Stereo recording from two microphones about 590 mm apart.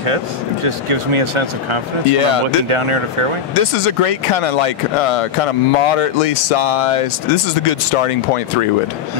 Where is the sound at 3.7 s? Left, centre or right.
Left.